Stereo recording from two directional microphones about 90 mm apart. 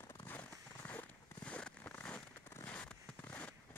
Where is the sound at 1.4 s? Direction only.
10° left (ahead or behind).